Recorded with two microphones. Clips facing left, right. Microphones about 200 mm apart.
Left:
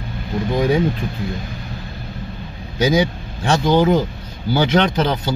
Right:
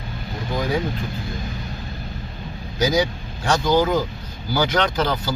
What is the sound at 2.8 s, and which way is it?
Speech, 25° left (ahead or behind).